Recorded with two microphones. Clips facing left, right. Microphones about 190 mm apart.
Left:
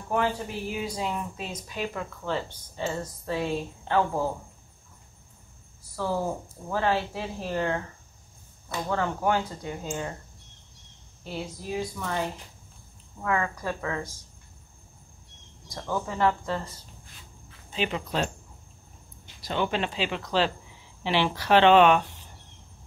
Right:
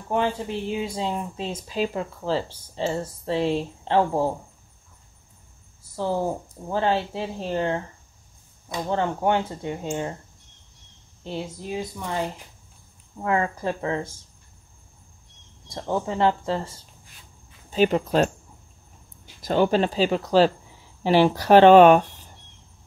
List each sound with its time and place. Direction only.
0.1 s speech: 25° right (ahead or behind)
5.9 s speech: 25° right (ahead or behind)
8.8 s speech: 25° right (ahead or behind)
11.2 s speech: 25° right (ahead or behind)
13.2 s speech: 30° right (ahead or behind)
15.7 s speech: 25° right (ahead or behind)
17.6 s speech: 40° right (ahead or behind)
19.4 s speech: 40° right (ahead or behind)